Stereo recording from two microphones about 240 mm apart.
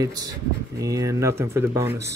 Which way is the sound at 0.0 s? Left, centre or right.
Centre.